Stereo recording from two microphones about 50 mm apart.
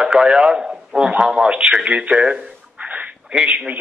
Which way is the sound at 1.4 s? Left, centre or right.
Right.